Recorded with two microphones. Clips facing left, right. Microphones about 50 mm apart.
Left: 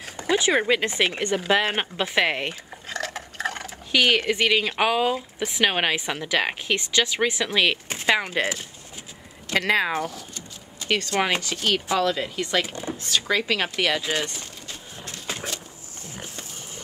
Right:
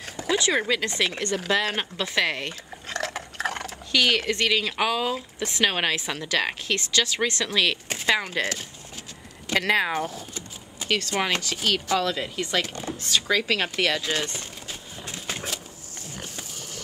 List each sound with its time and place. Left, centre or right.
0.0 s a sound: centre
0.4 s speech: centre
2.9 s a sound: centre
3.9 s a woman's voice: centre
5.1 s a woman's voice: centre
9.5 s speech: centre
10.0 s vehicle: right
11.1 s a woman's voice: centre
15.3 s a sound: centre